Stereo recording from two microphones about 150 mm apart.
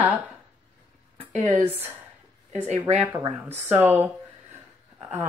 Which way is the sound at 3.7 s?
10° right (ahead or behind).